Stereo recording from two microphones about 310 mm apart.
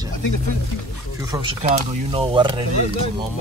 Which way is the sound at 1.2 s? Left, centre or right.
Centre.